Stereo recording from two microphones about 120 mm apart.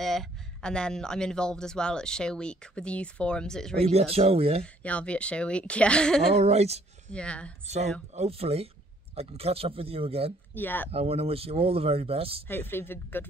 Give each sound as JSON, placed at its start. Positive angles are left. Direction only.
{"t": 0.0, "sound": "speech", "side_deg": 5}
{"t": 3.7, "sound": "speech", "side_deg": -60}
{"t": 4.8, "sound": "speech", "side_deg": 10}
{"t": 6.3, "sound": "speech", "side_deg": -60}
{"t": 7.1, "sound": "speech", "side_deg": 10}
{"t": 7.6, "sound": "speech", "side_deg": -65}
{"t": 10.5, "sound": "speech", "side_deg": 15}
{"t": 10.9, "sound": "speech", "side_deg": -55}
{"t": 12.4, "sound": "speech", "side_deg": 20}